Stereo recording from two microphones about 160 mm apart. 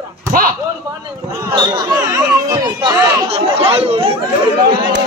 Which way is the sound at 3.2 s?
35° right (ahead or behind).